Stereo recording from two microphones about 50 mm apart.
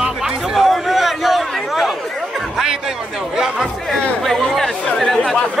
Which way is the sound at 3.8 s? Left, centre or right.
Centre.